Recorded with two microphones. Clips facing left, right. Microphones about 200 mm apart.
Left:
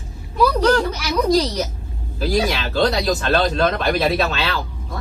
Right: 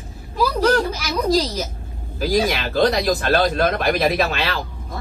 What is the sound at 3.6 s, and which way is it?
Speech, 10° right (ahead or behind).